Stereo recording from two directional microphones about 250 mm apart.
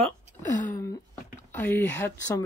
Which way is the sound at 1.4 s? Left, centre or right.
Centre.